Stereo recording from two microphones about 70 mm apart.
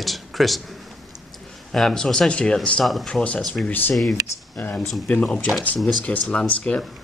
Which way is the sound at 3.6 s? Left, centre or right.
Left.